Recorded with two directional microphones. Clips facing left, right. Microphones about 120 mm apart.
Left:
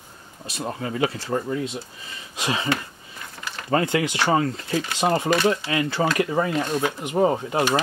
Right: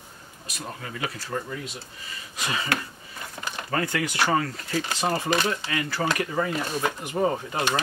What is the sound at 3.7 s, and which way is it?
Speech, 20° left (ahead or behind).